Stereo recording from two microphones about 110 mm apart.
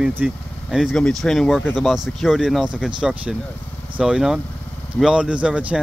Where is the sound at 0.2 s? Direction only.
10° right (ahead or behind).